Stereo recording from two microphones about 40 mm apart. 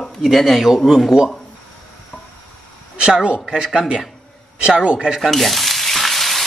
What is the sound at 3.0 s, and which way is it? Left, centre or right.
Speech, centre.